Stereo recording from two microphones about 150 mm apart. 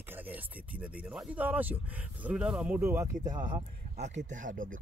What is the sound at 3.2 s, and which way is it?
Speech, 30° right (ahead or behind).